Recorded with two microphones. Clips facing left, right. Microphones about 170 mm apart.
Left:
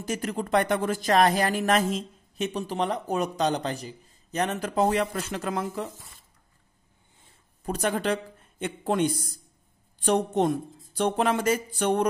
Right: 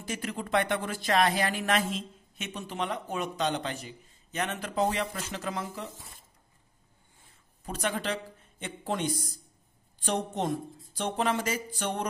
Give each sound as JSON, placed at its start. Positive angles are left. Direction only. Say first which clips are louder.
{"t": 0.0, "sound": "speech", "louder": "left 5 dB", "side_deg": 45}
{"t": 7.6, "sound": "speech", "louder": "left 5 dB", "side_deg": 45}